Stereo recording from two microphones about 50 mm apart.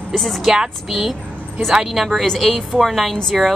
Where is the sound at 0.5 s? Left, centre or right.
Centre.